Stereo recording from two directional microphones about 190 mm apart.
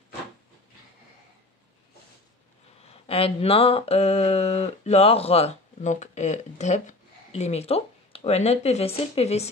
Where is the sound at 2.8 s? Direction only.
30° left (ahead or behind).